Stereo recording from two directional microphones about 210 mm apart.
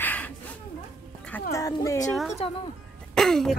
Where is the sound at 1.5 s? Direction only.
15° left (ahead or behind).